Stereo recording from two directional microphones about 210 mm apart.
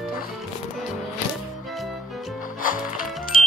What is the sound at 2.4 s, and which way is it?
Music, 40° left (ahead or behind).